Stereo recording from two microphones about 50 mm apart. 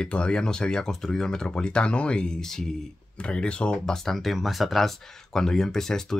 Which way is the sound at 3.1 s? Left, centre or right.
Centre.